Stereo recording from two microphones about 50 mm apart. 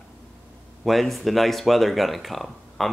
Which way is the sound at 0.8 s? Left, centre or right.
Centre.